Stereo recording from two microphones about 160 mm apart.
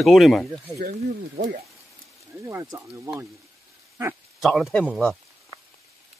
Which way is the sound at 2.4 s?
20° right (ahead or behind).